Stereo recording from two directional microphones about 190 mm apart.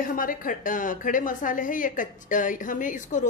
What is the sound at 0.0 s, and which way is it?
A woman's voice, 45° left (ahead or behind).